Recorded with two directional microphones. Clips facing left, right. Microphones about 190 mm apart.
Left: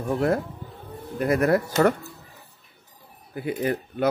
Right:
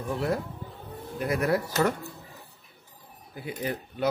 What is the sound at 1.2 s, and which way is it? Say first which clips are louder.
Speech: left 5 dB; 55° left (ahead or behind).